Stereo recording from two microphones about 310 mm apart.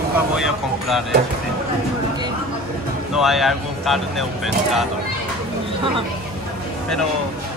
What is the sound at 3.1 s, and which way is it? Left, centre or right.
Speech, centre.